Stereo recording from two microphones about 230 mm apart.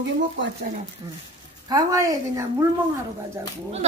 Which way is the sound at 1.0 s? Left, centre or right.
Centre.